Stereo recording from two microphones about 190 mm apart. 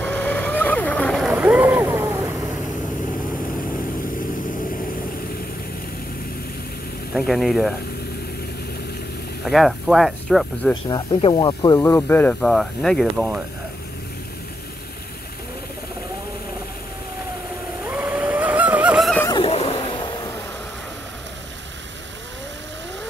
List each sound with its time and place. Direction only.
0.0 s boat: 10° left (ahead or behind); by 2.3 s 10° right (ahead or behind)
7.2 s speech: centre (ahead or behind)
9.4 s speech: centre (ahead or behind)
10.7 s speech: 25° left (ahead or behind); by 13.4 s centre (ahead or behind)
17.8 s vehicle: 5° right (ahead or behind)
19.2 s a sound: 25° left (ahead or behind)